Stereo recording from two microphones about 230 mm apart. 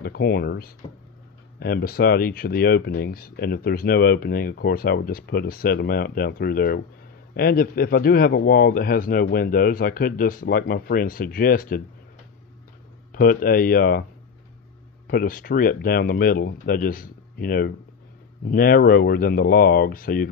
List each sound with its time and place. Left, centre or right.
0.0 s speech: left
13.1 s speech: left
15.0 s speech: left